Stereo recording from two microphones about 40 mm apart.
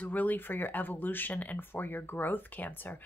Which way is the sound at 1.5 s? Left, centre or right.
Left.